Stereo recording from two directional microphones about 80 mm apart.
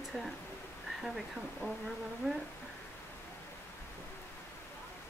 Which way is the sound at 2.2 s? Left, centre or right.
Centre.